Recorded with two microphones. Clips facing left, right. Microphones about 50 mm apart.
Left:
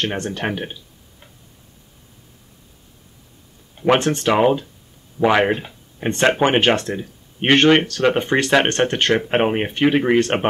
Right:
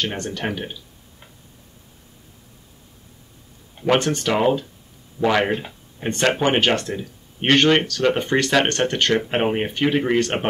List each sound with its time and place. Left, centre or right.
0.1 s speech: left
3.8 s speech: left